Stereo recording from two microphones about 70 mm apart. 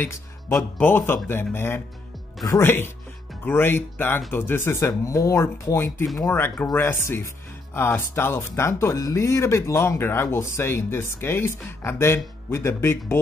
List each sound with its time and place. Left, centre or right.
0.1 s speech: left